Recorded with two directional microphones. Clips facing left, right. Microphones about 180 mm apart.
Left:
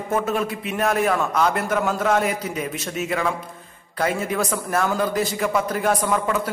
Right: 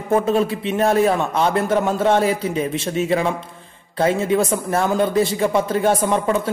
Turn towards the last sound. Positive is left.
turn(degrees=-25)  # may be behind; listen again after turning